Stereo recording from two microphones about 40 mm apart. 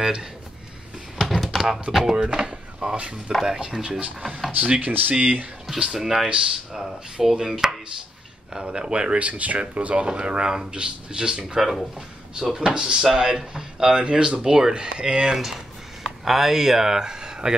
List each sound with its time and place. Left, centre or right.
0.0 s speech: centre
1.2 s a sound: centre
1.5 s speech: centre
2.1 s speech: right
3.6 s a man's voice: right
4.6 s speech: right
5.8 s speech: centre
6.2 s a man's voice: right
6.7 s a man's voice: centre; by 9.2 s right
9.2 s a man's voice: right; by 15.3 s centre
15.3 s speech: centre